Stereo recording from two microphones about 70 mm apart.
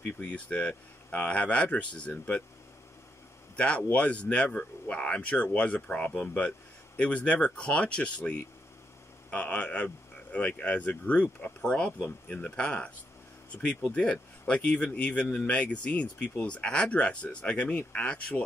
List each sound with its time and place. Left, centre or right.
0.0 s speech: centre
3.5 s speech: centre